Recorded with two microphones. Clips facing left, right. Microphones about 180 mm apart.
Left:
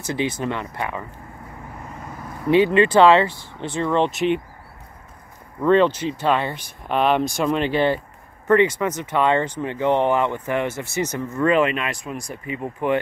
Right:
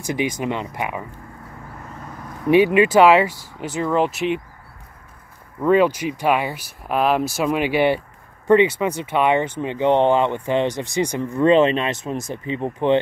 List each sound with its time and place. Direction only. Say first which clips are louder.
0.0 s speech: right 1 dB; 15° right (ahead or behind)
2.4 s speech: right 1 dB; 15° right (ahead or behind)
5.6 s speech: even; 10° right (ahead or behind)
8.5 s speech: right 2 dB; 20° right (ahead or behind)